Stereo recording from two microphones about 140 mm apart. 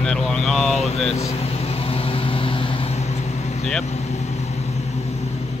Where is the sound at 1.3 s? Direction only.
45° left (ahead or behind).